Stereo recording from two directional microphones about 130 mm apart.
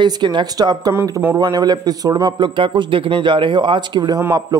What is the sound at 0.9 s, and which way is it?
Speech, 15° right (ahead or behind).